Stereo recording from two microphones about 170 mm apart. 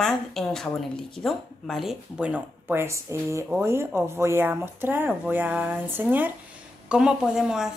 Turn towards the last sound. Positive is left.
turn(degrees=-5)  # may be behind; listen again after turning